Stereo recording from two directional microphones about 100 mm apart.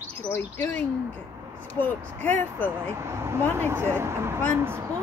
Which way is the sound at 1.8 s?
15° left (ahead or behind).